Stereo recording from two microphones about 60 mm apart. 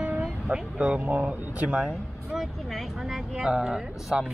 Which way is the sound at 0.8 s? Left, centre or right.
Right.